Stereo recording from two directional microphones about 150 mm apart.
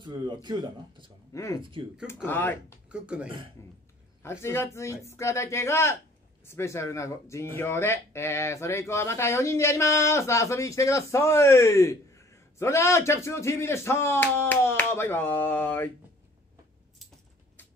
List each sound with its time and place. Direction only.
0.0 s speech: 30° right (ahead or behind)
1.3 s speech: 20° left (ahead or behind)
1.6 s speech: 35° right (ahead or behind)
2.2 s speech: 15° left (ahead or behind)
2.9 s speech: 5° right (ahead or behind)
4.2 s speech: 15° left (ahead or behind)